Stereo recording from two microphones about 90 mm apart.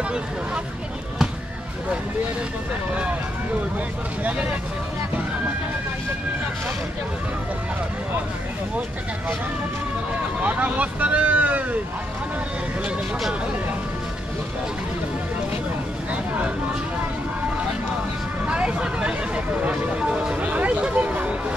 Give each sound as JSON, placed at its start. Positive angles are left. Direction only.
{"t": 4.2, "sound": "speech", "side_deg": -15}
{"t": 10.4, "sound": "speech", "side_deg": -15}
{"t": 16.1, "sound": "speech", "side_deg": -15}
{"t": 18.4, "sound": "vehicle", "side_deg": -15}